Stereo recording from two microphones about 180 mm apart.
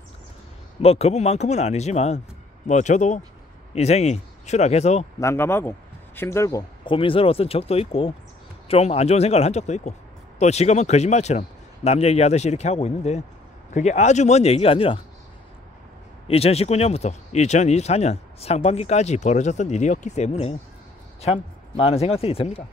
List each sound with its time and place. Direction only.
0.8 s speech: 35° left (ahead or behind)
5.2 s a man's voice: 15° left (ahead or behind); by 15.0 s 30° left (ahead or behind)
16.3 s speech: 35° left (ahead or behind)